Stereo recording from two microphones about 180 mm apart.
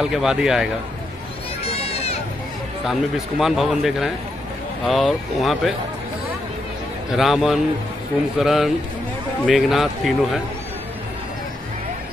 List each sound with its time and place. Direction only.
0.0 s speech: 5° right (ahead or behind)
1.6 s run: 35° left (ahead or behind)
2.9 s speech: centre (ahead or behind)
7.1 s speech: centre (ahead or behind)